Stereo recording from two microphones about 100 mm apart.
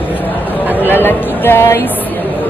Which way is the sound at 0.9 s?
20° left (ahead or behind).